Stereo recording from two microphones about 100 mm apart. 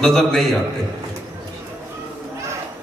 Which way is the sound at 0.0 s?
5° left (ahead or behind).